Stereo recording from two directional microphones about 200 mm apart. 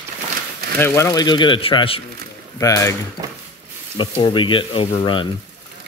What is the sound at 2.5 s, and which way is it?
Speech, 15° left (ahead or behind).